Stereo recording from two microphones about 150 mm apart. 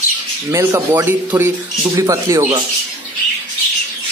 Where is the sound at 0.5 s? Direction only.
20° right (ahead or behind).